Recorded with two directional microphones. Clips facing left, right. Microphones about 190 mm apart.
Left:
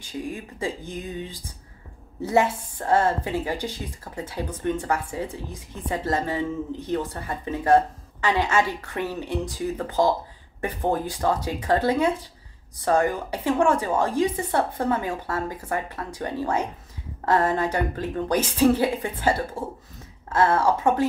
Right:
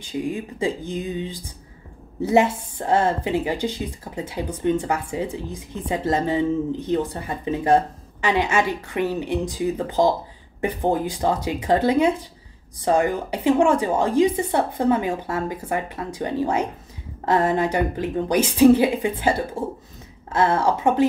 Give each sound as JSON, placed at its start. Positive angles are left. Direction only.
{"t": 0.0, "sound": "a woman's voice", "side_deg": -20}